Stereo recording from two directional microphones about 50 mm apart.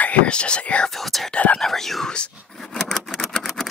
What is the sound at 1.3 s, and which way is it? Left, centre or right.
Whispering, left.